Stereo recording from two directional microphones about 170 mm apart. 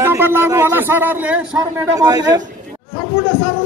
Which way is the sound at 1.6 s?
20° right (ahead or behind).